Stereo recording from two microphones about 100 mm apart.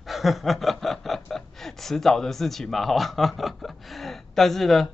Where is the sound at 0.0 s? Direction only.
Centre (ahead or behind).